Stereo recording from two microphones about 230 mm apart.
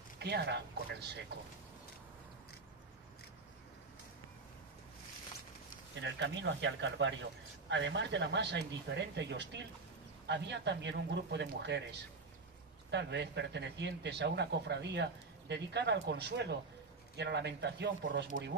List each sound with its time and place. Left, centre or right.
0.2 s speech: right
5.9 s speech: right
12.9 s speech: right